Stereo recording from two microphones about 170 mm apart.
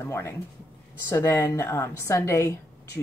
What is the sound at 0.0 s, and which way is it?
Speech, 15° left (ahead or behind).